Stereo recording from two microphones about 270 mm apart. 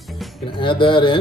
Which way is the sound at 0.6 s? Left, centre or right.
Centre.